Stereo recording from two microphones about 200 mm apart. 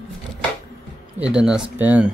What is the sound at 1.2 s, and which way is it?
Speech, 5° right (ahead or behind).